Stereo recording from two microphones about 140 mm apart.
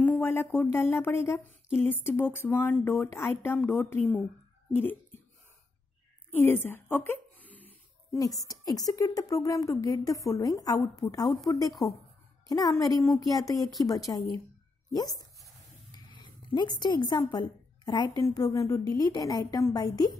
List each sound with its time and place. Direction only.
0.0 s a sound: 15° left (ahead or behind)
0.6 s speech: 15° left (ahead or behind)
6.3 s a sound: 15° left (ahead or behind)
8.5 s a woman's voice: 25° left (ahead or behind)
13.1 s speech: centre (ahead or behind)
13.8 s a woman's voice: 25° left (ahead or behind)